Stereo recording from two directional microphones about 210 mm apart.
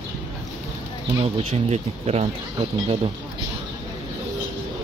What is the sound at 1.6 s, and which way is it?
Speech, 30° right (ahead or behind).